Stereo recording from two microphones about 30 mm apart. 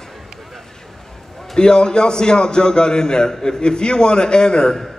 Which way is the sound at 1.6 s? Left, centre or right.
Left.